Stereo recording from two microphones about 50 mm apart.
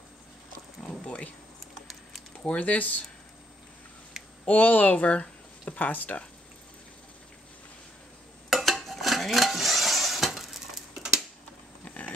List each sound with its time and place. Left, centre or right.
1.0 s speech: left
2.3 s speech: left
4.5 s speech: left
8.5 s stir: centre
11.8 s vehicle: left